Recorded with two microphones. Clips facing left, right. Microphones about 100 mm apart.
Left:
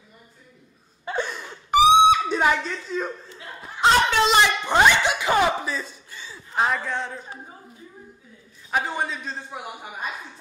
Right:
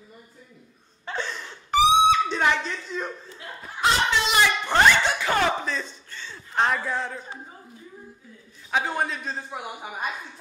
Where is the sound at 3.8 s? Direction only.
25° left (ahead or behind).